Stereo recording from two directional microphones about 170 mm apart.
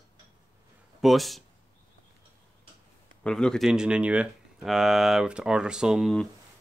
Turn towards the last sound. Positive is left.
turn(degrees=0)  # may be behind; listen again after turning